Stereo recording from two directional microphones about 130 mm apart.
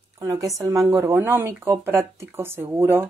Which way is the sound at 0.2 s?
25° right (ahead or behind).